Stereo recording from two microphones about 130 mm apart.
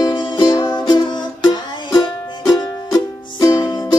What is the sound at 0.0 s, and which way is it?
Music, 35° left (ahead or behind).